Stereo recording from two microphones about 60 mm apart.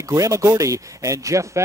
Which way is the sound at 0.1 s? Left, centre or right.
Right.